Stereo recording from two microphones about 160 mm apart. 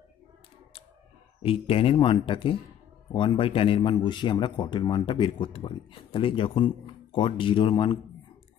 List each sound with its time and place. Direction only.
1.4 s a man's voice: 35° left (ahead or behind)